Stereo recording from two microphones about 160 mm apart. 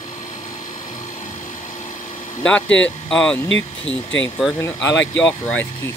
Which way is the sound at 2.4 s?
5° left (ahead or behind).